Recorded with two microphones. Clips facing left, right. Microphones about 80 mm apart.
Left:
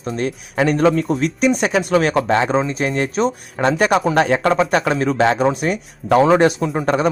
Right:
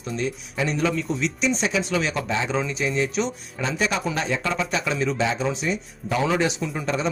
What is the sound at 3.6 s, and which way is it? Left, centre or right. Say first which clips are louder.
Speech: left 9 dB; left.